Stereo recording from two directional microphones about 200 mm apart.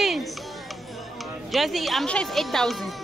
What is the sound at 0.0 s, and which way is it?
Music, centre (ahead or behind).